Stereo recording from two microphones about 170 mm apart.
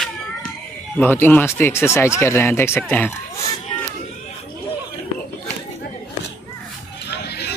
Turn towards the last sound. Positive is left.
turn(degrees=75)  # may be behind; listen again after turning